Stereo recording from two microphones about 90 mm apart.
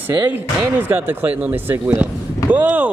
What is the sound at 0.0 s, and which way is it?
A man's voice, 20° right (ahead or behind).